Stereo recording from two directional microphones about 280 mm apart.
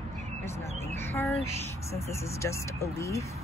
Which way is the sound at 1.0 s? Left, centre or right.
Centre.